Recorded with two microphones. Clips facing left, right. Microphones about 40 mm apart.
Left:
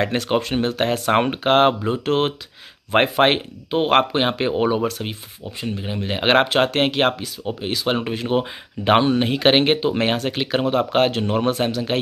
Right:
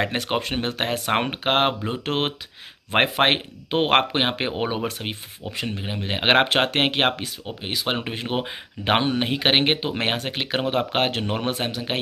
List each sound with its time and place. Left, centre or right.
0.0 s speech: centre
6.4 s speech: right
7.4 s speech: centre
11.1 s speech: right
11.3 s speech: centre